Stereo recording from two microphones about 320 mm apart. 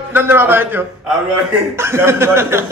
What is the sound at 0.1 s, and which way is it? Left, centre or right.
Speech, centre.